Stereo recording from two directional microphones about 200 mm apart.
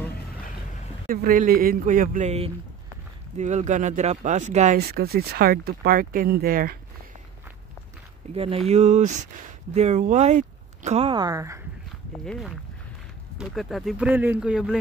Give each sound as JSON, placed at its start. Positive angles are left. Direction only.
{"t": 1.0, "sound": "speech", "side_deg": -45}
{"t": 4.7, "sound": "speech", "side_deg": -50}
{"t": 8.4, "sound": "speech", "side_deg": -30}
{"t": 12.3, "sound": "speech", "side_deg": 0}